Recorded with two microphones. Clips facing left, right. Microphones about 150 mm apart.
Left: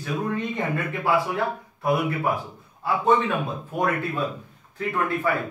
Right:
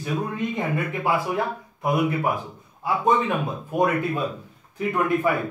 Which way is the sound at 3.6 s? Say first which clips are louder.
Right 5 dB; 15° right (ahead or behind).